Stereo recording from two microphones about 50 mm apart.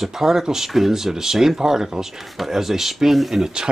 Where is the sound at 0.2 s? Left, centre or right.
Centre.